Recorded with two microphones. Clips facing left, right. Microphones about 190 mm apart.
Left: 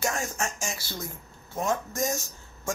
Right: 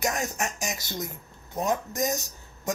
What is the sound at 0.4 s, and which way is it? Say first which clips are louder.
Speech: right 1 dB; 15° right (ahead or behind).